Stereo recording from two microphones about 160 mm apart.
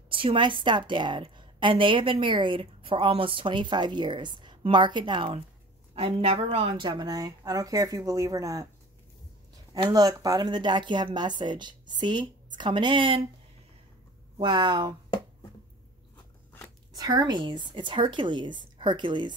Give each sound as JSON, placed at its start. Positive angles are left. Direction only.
{"t": 0.1, "sound": "a woman's voice", "side_deg": -35}
{"t": 9.8, "sound": "a woman's voice", "side_deg": -25}
{"t": 14.4, "sound": "a woman's voice", "side_deg": -30}
{"t": 16.9, "sound": "a woman's voice", "side_deg": -25}